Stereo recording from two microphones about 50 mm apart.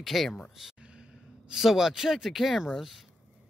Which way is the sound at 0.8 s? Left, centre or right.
Centre.